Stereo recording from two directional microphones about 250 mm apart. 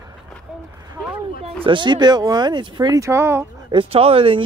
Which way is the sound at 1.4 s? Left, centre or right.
Right.